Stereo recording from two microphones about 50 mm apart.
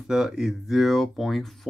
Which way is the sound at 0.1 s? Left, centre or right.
Centre.